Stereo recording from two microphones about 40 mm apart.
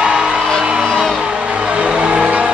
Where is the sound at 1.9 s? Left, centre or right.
Right.